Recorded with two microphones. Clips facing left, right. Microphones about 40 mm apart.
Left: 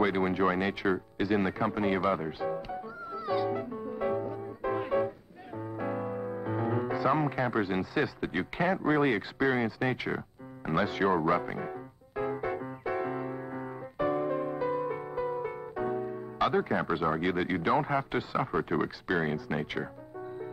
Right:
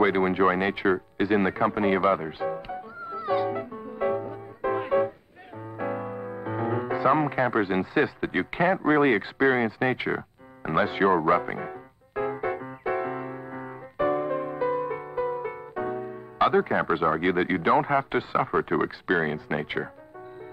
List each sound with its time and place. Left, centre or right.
0.0 s radio: right
5.6 s music: right